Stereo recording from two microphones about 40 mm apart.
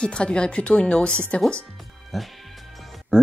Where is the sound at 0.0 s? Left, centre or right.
Left.